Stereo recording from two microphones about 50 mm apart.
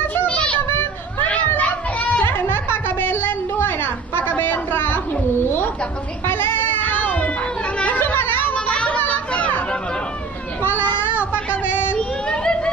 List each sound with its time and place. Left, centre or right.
0.3 s a sound: left
0.6 s children playing: left
1.6 s children playing: left
2.2 s a sound: left
6.2 s child singing: left
7.8 s chatter: left
8.7 s chatter: left
10.6 s child singing: left
12.0 s a sound: centre